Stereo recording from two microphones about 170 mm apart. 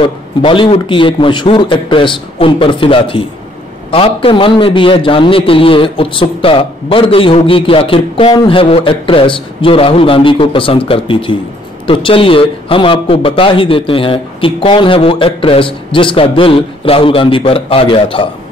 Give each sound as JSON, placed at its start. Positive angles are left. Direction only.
{"t": 0.0, "sound": "a man's voice", "side_deg": 30}